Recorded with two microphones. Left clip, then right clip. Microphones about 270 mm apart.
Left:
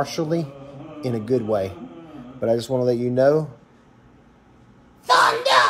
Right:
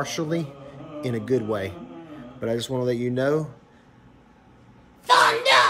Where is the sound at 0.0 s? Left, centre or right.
Centre.